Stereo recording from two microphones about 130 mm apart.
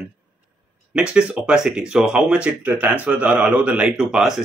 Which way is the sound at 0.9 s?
5° right (ahead or behind).